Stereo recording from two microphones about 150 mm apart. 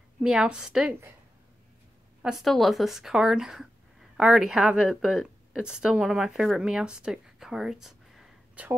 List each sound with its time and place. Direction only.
0.2 s speech: 5° right (ahead or behind)
2.2 s a woman's voice: centre (ahead or behind)